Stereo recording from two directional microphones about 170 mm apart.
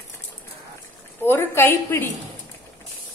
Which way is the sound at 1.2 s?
15° left (ahead or behind).